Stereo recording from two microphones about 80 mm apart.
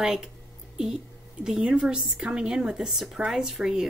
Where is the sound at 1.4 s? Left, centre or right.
Centre.